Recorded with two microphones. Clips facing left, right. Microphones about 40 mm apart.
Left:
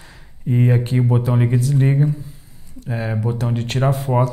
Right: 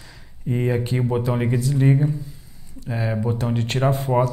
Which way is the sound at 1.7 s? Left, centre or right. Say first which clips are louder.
Left 1 dB; centre.